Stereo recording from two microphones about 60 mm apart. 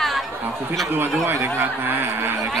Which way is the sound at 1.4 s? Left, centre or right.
Right.